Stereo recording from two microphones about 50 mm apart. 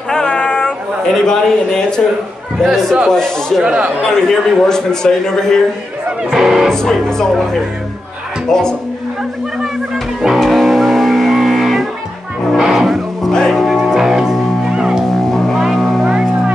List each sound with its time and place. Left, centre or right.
0.1 s a sound: centre
1.0 s a man's voice: centre
2.6 s a man's voice: centre
3.1 s a man's voice: centre
3.6 s speech: centre
4.1 s a man's voice: centre
6.3 s speech: centre
6.7 s a man's voice: centre
8.5 s a man's voice: centre
10.4 s music: centre
13.9 s music: centre
15.3 s music: centre
16.1 s music: right